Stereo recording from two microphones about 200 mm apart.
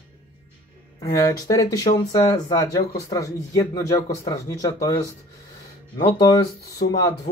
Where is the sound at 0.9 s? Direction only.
15° left (ahead or behind).